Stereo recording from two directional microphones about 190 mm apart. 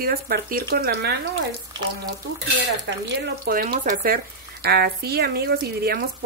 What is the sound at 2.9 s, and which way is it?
Speech, 65° right (ahead or behind).